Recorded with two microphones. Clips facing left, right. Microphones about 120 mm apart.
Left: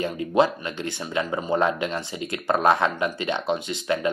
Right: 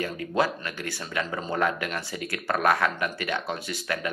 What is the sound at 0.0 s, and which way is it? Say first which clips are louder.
Speech: left 5 dB; 20° left (ahead or behind).